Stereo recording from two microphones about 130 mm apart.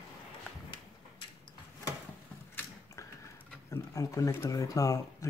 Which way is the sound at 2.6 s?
15° left (ahead or behind).